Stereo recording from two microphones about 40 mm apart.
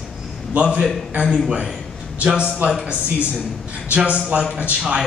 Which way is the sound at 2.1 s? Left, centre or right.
Right.